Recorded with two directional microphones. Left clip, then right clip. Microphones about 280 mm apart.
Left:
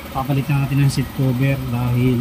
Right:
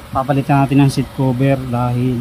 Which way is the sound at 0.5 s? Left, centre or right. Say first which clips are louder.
Right 9 dB; centre.